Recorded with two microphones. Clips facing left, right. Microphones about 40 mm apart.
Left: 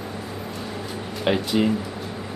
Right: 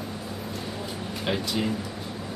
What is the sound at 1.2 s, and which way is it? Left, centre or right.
Speech, left.